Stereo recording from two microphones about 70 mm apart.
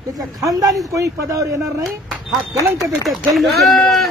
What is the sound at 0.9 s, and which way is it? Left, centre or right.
Speech, right.